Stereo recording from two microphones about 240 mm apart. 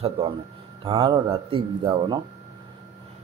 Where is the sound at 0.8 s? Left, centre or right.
Right.